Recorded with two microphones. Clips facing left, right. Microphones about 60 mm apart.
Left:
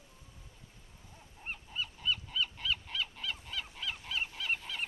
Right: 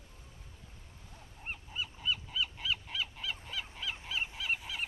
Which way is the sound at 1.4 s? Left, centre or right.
Centre.